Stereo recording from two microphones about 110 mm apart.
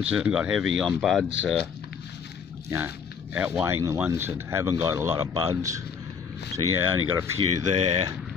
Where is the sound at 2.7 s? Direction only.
15° right (ahead or behind).